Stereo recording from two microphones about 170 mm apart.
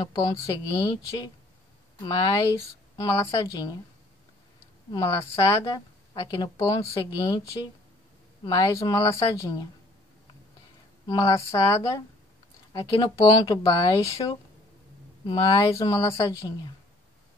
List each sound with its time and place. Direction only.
0.0 s a woman's voice: 20° left (ahead or behind)
4.9 s a woman's voice: 20° left (ahead or behind)
11.1 s a woman's voice: 20° left (ahead or behind)